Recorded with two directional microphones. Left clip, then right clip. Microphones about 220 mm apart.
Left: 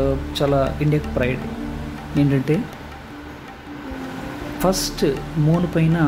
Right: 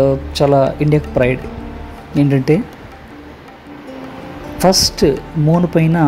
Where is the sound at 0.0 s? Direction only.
20° right (ahead or behind).